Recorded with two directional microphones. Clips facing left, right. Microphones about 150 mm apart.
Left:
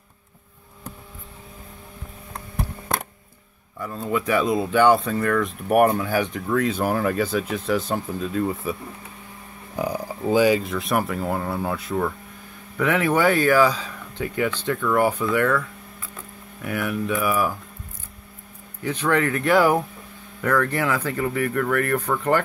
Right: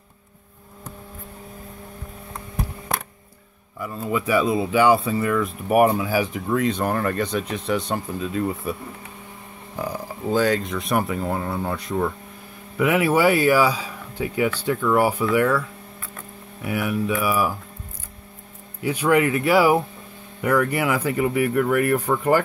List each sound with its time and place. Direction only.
3.8 s speech: 5° right (ahead or behind)
9.8 s speech: 15° left (ahead or behind); by 15.6 s 10° right (ahead or behind)
16.6 s speech: 5° right (ahead or behind)
18.8 s speech: 10° right (ahead or behind)